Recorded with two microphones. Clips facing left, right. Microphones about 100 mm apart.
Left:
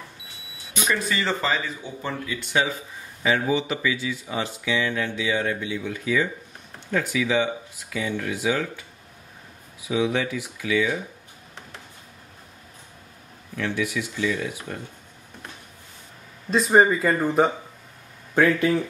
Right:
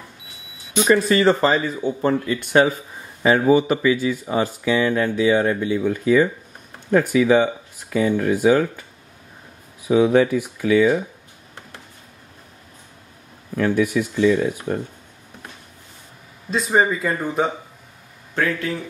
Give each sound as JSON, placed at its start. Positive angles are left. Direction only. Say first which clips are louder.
{"t": 0.7, "sound": "speech", "louder": "right 9 dB", "side_deg": -40}
{"t": 13.6, "sound": "speech", "louder": "right 8 dB", "side_deg": -45}
{"t": 16.4, "sound": "speech", "louder": "left 1 dB", "side_deg": 0}
{"t": 18.3, "sound": "speech", "louder": "left 3 dB", "side_deg": 10}